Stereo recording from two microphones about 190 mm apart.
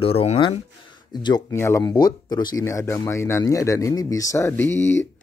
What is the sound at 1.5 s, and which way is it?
Speech, 15° left (ahead or behind).